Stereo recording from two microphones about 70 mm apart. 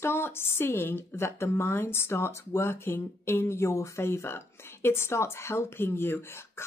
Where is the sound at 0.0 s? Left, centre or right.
Left.